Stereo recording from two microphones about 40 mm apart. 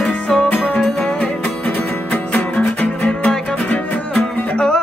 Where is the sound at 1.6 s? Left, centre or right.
Left.